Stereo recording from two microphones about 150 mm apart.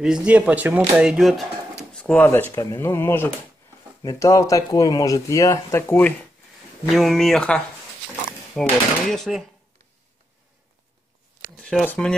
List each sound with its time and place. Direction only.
0.0 s speech: 5° right (ahead or behind)
2.0 s speech: 10° left (ahead or behind)
6.9 s speech: centre (ahead or behind)
11.6 s speech: 10° left (ahead or behind)